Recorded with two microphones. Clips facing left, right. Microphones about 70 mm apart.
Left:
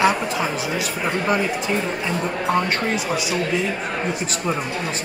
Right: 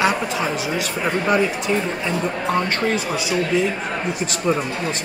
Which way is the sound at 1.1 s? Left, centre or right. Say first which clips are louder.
Right 3 dB; centre.